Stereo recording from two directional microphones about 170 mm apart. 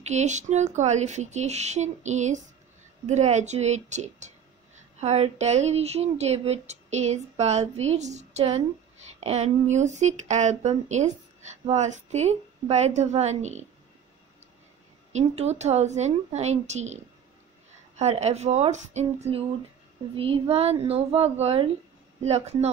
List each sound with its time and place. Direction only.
0.0 s speech: 45° right (ahead or behind)
15.1 s speech: 40° right (ahead or behind)